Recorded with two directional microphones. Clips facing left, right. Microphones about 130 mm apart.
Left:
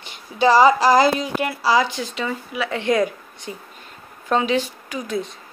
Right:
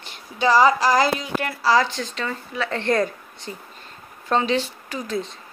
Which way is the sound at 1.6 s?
10° left (ahead or behind).